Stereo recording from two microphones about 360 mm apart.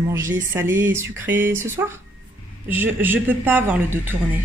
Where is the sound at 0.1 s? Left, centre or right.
Centre.